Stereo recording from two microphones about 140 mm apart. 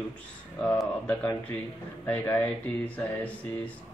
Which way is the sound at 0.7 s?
10° left (ahead or behind).